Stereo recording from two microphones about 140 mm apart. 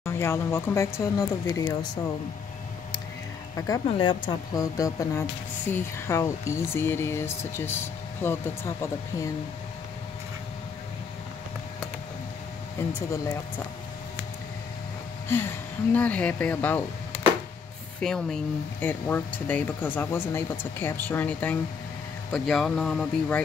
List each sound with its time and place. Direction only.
0.0 s speech: 20° left (ahead or behind)
3.5 s speech: 25° left (ahead or behind)
15.2 s speech: 15° left (ahead or behind)
18.0 s speech: 5° left (ahead or behind)